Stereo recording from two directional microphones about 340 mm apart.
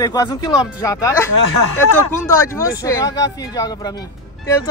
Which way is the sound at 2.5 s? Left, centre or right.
Centre.